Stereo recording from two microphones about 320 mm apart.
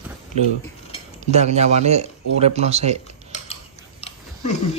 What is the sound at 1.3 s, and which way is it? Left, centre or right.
Speech, right.